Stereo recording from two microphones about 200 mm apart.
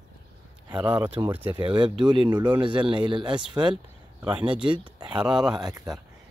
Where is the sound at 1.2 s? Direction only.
20° right (ahead or behind).